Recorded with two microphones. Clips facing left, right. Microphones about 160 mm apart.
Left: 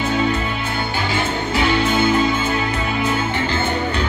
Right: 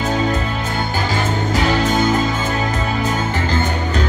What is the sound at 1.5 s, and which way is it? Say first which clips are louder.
Music: even; 40° right (ahead or behind).